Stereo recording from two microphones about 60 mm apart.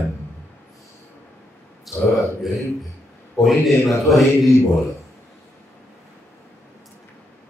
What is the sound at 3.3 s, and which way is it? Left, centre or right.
Speech, centre.